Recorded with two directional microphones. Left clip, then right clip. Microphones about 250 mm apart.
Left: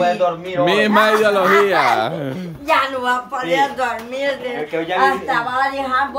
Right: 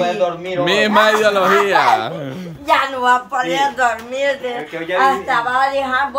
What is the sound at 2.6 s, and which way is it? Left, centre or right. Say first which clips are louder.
Speech: right 2 dB; right.